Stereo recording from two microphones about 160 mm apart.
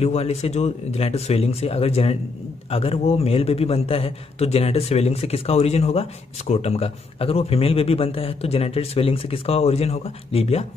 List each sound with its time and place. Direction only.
0.0 s a man's voice: 40° left (ahead or behind)